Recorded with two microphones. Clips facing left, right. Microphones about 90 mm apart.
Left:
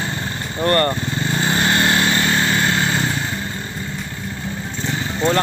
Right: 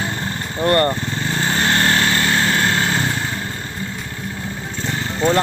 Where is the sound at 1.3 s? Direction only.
5° left (ahead or behind).